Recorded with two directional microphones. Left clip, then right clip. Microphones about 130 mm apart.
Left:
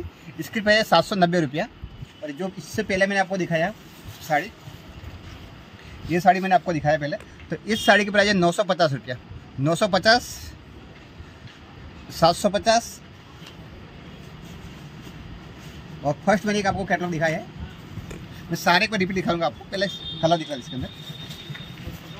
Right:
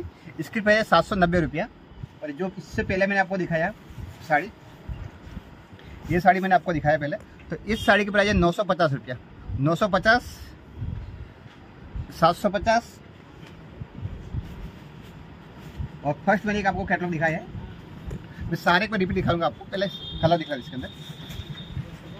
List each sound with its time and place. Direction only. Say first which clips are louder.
0.4 s speech: left 1 dB; 15° left (ahead or behind)
2.2 s speech: even; 60° left (ahead or behind)
6.1 s speech: left 1 dB; 20° left (ahead or behind)
12.1 s speech: left 2 dB; 30° left (ahead or behind)
12.5 s speech: left 2 dB; 50° left (ahead or behind)
16.0 s speech: left 2 dB; 75° left (ahead or behind)
18.6 s speech: left 2 dB; 35° left (ahead or behind)